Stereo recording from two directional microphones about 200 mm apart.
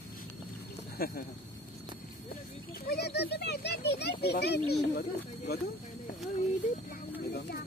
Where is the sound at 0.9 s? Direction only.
45° left (ahead or behind).